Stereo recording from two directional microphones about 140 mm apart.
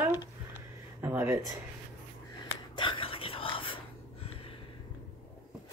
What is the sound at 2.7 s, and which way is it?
Whispering, 35° left (ahead or behind).